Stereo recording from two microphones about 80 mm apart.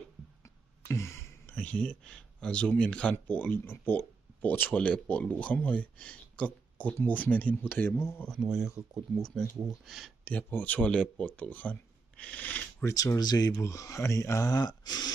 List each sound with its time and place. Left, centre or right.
0.4 s a sound: left
1.5 s speech: centre
8.4 s speech: centre
9.2 s speech: centre
10.2 s speech: left
12.9 s speech: left
13.5 s speech: left